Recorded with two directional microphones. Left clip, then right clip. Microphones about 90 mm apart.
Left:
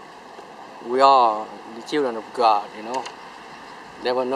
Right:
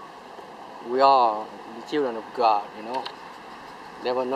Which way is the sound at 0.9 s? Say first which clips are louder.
Left 3 dB; 25° left (ahead or behind).